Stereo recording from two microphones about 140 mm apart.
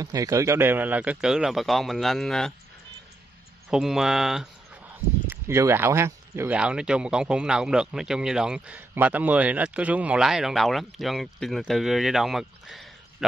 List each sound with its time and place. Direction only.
0.0 s a man's voice: 25° right (ahead or behind); by 2.5 s 5° left (ahead or behind)
3.7 s a man's voice: centre (ahead or behind)
5.3 s speech: 20° right (ahead or behind)
6.5 s a man's voice: 5° right (ahead or behind)